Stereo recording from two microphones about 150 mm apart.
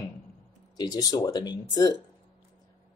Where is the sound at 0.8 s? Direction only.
25° left (ahead or behind).